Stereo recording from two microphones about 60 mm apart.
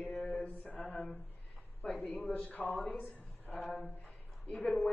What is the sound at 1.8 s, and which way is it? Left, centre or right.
Speech, left.